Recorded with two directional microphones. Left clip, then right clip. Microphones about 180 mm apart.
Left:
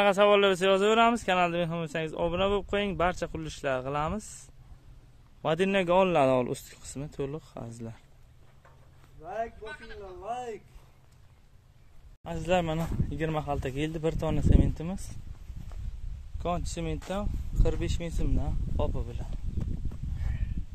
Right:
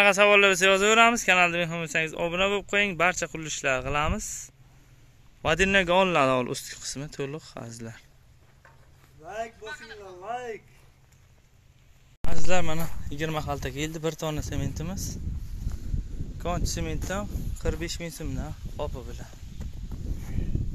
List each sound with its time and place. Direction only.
0.0 s speech: 5° left (ahead or behind)
5.4 s speech: centre (ahead or behind)
9.2 s speech: 5° right (ahead or behind)
10.2 s speech: 20° left (ahead or behind)
12.3 s speech: 15° left (ahead or behind)
16.4 s speech: centre (ahead or behind)